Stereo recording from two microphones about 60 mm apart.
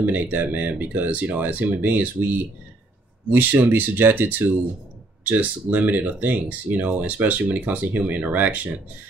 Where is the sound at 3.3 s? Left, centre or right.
Right.